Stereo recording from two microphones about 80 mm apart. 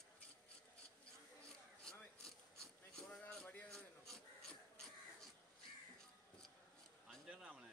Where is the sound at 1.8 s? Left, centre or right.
Centre.